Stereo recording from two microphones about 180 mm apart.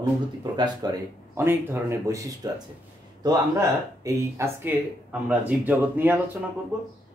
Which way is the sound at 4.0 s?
20° right (ahead or behind).